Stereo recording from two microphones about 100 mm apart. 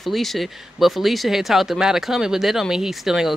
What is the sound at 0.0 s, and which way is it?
Speech, centre (ahead or behind).